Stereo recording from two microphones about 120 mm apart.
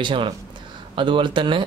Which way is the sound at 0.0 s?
45° right (ahead or behind).